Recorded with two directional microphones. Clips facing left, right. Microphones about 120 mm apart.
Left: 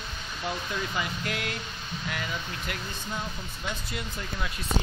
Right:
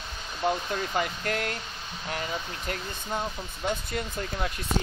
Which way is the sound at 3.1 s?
50° right (ahead or behind).